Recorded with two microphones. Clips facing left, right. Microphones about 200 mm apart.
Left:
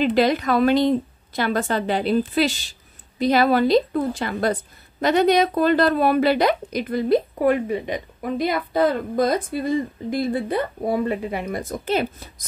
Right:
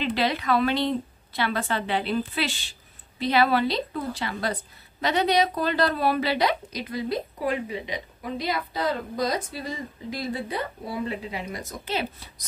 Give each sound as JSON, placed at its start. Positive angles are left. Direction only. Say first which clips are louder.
{"t": 0.0, "sound": "a woman's voice", "louder": "left 7 dB", "side_deg": 45}